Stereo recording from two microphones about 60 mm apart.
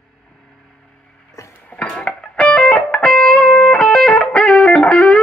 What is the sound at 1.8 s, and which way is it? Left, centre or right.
Music, centre.